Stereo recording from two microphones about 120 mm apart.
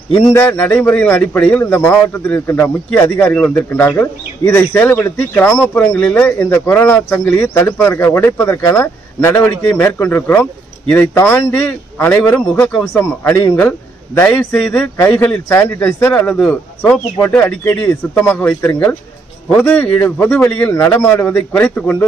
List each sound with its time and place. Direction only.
0.3 s speech: 15° left (ahead or behind)